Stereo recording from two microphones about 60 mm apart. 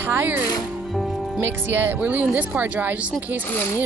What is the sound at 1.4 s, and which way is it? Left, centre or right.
Speech, right.